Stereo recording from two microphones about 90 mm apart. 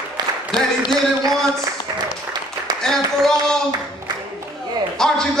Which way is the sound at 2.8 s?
5° left (ahead or behind).